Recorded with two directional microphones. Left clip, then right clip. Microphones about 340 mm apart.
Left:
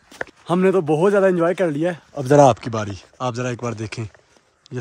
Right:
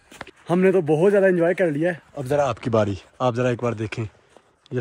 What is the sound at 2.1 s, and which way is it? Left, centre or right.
Speech, left.